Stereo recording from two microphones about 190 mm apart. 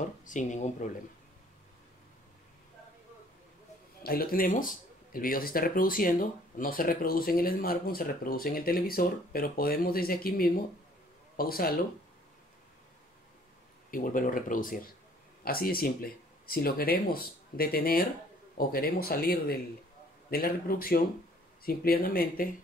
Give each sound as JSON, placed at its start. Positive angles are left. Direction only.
{"t": 0.2, "sound": "speech", "side_deg": 40}
{"t": 4.0, "sound": "speech", "side_deg": 50}
{"t": 13.8, "sound": "speech", "side_deg": 45}